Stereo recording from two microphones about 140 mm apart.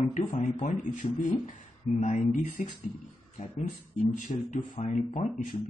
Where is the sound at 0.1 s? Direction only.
65° left (ahead or behind).